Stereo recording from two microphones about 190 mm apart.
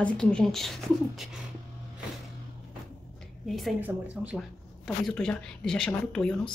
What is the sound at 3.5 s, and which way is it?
A woman's voice, 5° right (ahead or behind).